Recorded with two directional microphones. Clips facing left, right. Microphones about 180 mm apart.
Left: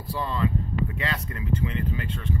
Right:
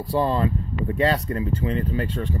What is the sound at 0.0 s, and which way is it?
Speech, 35° right (ahead or behind).